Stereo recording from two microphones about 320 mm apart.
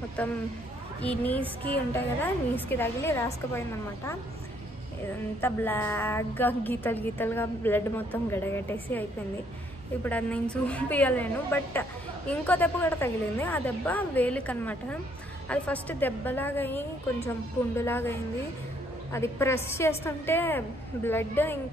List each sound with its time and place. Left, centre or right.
0.2 s a woman's voice: centre
5.4 s a woman's voice: centre
10.0 s a woman's voice: centre
19.1 s a woman's voice: centre